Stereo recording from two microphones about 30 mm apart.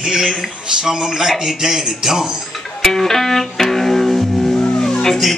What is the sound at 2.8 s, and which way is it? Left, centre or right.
Music, centre.